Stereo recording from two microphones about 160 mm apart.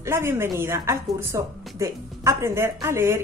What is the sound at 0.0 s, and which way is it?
Speech, 15° right (ahead or behind).